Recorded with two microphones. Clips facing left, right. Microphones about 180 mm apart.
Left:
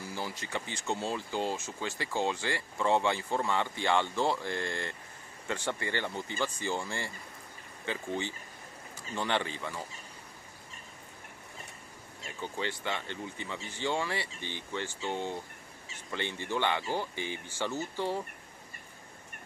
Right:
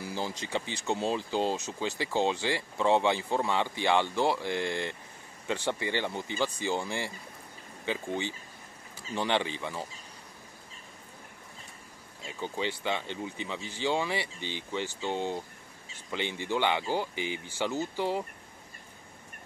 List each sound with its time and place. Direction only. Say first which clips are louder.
0.0 s speech: right 3 dB; 20° right (ahead or behind)
12.3 s speech: right 3 dB; 20° right (ahead or behind)